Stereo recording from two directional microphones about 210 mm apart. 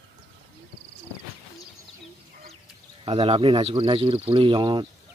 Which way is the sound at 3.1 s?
30° right (ahead or behind).